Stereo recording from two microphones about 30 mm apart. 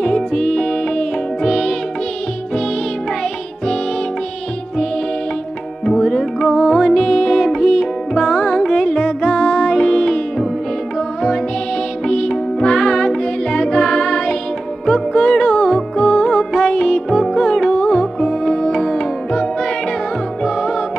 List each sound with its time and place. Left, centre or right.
0.0 s music: centre
5.9 s music: centre
12.6 s music: centre